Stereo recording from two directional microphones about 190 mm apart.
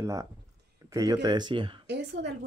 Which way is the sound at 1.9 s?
65° right (ahead or behind).